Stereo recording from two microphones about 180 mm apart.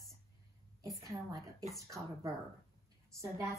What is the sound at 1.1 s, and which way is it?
A woman's voice, 20° right (ahead or behind).